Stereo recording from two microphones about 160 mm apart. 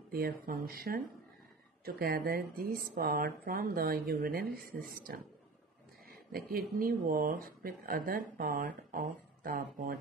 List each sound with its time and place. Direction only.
0.1 s speech: 65° right (ahead or behind)